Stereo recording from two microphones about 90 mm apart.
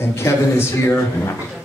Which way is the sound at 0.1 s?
30° left (ahead or behind).